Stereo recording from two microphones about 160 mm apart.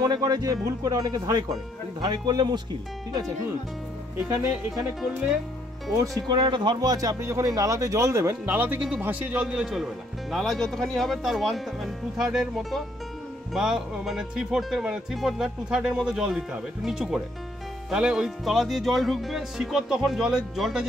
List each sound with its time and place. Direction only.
0.0 s speech: 25° right (ahead or behind)
6.1 s a man's voice: 25° right (ahead or behind); by 20.8 s 5° right (ahead or behind)